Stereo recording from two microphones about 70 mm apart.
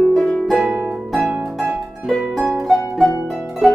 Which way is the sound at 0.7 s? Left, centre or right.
Centre.